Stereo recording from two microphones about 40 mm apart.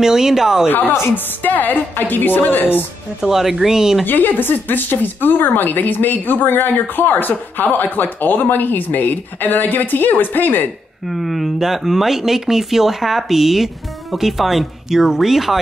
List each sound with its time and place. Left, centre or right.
0.0 s speech: centre
0.7 s a woman's voice: left
3.2 s speech: centre
4.0 s speech: left
11.1 s speech: centre